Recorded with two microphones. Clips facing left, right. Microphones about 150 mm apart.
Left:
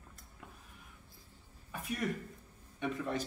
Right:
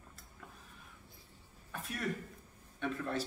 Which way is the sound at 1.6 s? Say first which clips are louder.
Left 3 dB; 10° left (ahead or behind).